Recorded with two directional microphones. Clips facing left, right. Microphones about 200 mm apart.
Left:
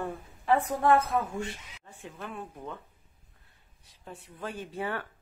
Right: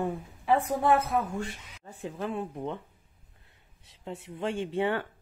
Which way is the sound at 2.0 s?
30° right (ahead or behind).